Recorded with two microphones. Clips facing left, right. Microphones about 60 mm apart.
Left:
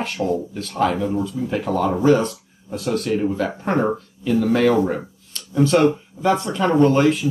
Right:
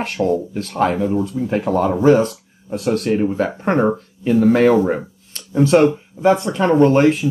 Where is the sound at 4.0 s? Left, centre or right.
Right.